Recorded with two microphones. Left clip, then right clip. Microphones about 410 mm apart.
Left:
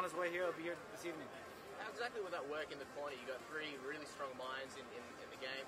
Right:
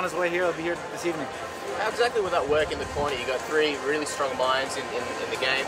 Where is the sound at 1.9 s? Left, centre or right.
Left.